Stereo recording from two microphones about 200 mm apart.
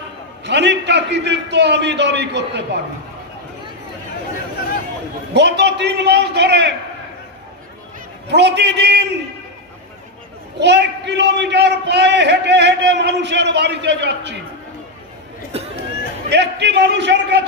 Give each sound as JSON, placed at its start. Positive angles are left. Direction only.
{"t": 0.4, "sound": "a man's voice", "side_deg": -60}
{"t": 5.3, "sound": "a man's voice", "side_deg": -60}
{"t": 8.3, "sound": "a man's voice", "side_deg": -60}
{"t": 10.6, "sound": "a man's voice", "side_deg": -60}
{"t": 16.3, "sound": "a man's voice", "side_deg": -60}